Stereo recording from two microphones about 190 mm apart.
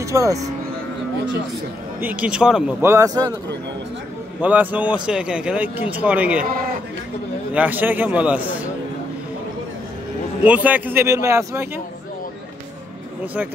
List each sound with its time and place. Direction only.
0.0 s speech: 15° right (ahead or behind)
2.0 s speech: 10° right (ahead or behind)
4.4 s speech: 10° right (ahead or behind)
6.4 s a man's voice: 50° right (ahead or behind)
7.5 s speech: 10° right (ahead or behind)
10.4 s speech: 10° right (ahead or behind)
13.2 s speech: 10° right (ahead or behind)